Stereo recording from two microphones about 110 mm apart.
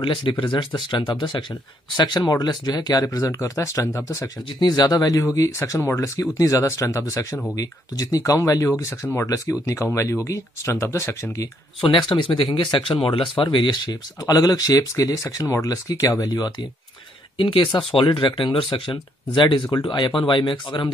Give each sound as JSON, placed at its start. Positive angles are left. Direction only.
{"t": 0.0, "sound": "speech", "side_deg": 45}
{"t": 4.6, "sound": "speech", "side_deg": 40}
{"t": 11.8, "sound": "speech", "side_deg": 50}
{"t": 17.4, "sound": "speech", "side_deg": 50}